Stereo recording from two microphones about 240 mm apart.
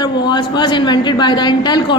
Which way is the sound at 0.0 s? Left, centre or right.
Centre.